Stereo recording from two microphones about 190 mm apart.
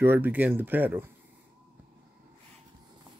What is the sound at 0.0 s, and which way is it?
Speech, 10° right (ahead or behind).